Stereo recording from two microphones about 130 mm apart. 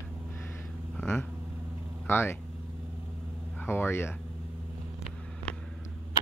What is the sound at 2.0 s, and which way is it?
Speech, 20° left (ahead or behind).